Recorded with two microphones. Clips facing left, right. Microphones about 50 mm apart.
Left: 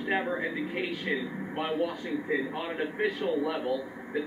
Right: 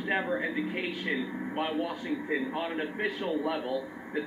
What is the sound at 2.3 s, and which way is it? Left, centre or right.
A man's voice, centre.